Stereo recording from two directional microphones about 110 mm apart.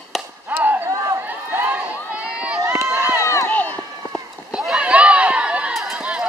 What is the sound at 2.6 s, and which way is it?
Run, 30° right (ahead or behind).